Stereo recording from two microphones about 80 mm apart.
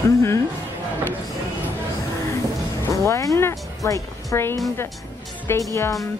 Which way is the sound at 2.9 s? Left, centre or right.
Left.